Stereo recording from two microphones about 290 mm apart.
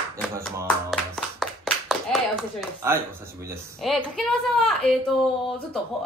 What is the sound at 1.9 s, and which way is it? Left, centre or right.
A woman's voice, centre.